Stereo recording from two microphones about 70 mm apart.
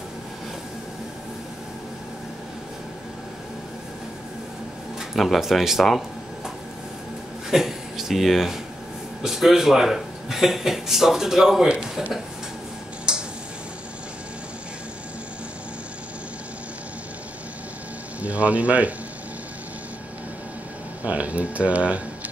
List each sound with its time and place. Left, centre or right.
5.1 s speech: centre
7.5 s a man's voice: centre
13.1 s tick-tock: centre
18.2 s speech: centre
21.0 s speech: right